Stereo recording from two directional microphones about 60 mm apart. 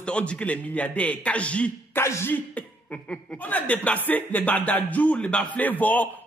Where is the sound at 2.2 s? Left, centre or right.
Left.